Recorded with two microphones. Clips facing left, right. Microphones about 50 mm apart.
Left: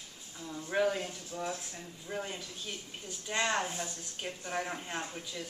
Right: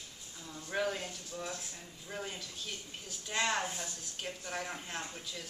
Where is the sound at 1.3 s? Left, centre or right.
Centre.